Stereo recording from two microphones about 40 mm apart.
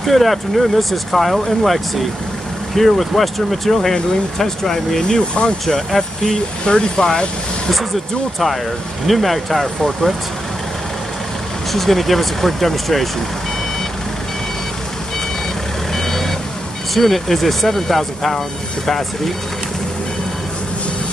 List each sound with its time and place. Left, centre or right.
0.0 s speech: centre
5.3 s speech: left
5.9 s speech: centre
9.0 s speech: centre
11.7 s speech: centre
15.9 s vehicle: centre
16.9 s speech: centre